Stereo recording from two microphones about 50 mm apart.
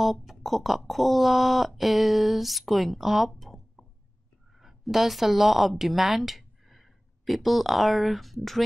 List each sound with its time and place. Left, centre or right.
0.0 s speech: centre
3.3 s a sound: centre
4.6 s a woman's voice: centre